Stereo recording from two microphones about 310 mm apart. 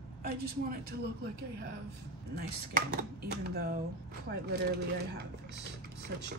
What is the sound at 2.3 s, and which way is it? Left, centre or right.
A woman's voice, right.